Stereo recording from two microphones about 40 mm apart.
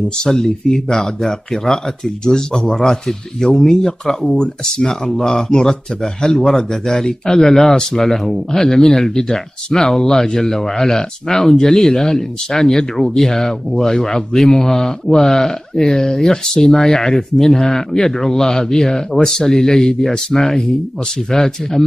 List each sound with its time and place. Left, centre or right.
0.2 s speech: centre